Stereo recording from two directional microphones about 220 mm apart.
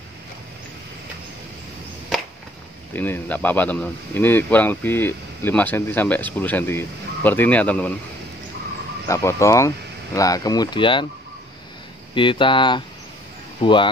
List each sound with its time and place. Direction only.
2.9 s speech: 10° left (ahead or behind)
9.0 s speech: 15° left (ahead or behind)
12.1 s speech: 20° left (ahead or behind)